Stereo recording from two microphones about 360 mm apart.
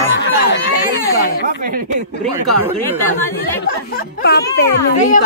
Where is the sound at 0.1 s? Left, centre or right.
Left.